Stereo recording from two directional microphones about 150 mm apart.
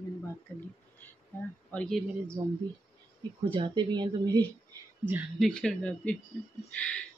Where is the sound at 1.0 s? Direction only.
15° left (ahead or behind).